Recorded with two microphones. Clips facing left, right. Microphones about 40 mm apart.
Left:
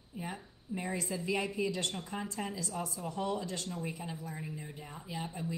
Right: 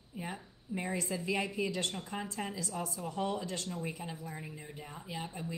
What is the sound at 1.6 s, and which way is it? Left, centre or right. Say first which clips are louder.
Speech: left 1 dB; right.